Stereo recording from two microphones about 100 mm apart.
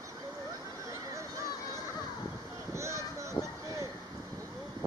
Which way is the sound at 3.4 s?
40° left (ahead or behind).